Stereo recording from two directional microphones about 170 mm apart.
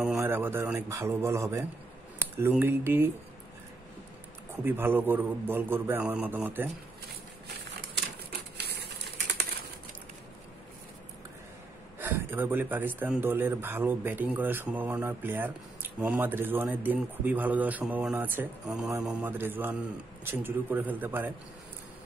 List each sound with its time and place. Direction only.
0.2 s a man's voice: 15° right (ahead or behind)
4.6 s a man's voice: 10° right (ahead or behind)
8.5 s typewriter: 75° right (ahead or behind)
12.0 s a man's voice: 10° right (ahead or behind)